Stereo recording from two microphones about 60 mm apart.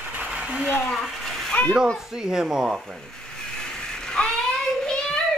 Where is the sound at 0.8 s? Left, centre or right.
Centre.